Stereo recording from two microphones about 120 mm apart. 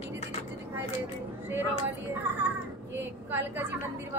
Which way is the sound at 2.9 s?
20° right (ahead or behind).